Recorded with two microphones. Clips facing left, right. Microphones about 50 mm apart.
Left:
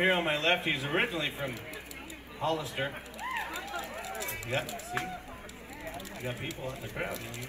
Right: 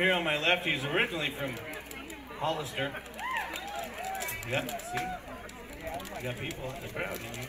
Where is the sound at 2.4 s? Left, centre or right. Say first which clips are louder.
Left 1 dB; right.